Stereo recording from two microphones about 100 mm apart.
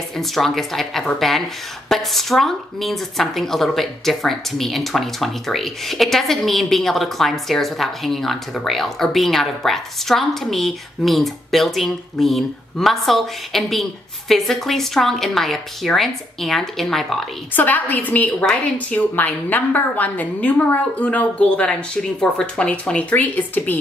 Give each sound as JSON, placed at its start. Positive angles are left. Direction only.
{"t": 0.2, "sound": "speech", "side_deg": 0}
{"t": 17.6, "sound": "a woman's voice", "side_deg": 15}